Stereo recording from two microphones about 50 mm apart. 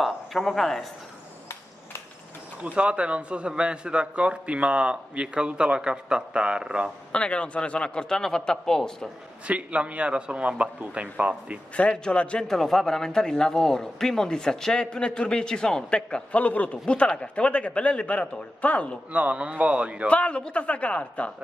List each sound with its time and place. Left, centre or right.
0.0 s speech: centre
2.6 s a man's voice: right
7.1 s speech: left
9.5 s a man's voice: right
11.7 s a man's voice: left
12.4 s a man's voice: centre; by 18.9 s left
19.1 s a man's voice: right
20.1 s a man's voice: left